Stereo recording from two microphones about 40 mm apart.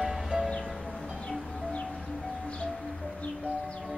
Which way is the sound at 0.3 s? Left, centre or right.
Centre.